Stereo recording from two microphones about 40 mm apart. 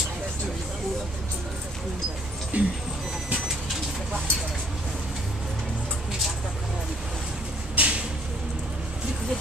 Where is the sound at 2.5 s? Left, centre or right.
Right.